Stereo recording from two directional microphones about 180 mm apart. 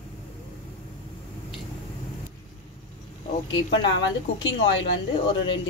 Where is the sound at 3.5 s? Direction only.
90° left.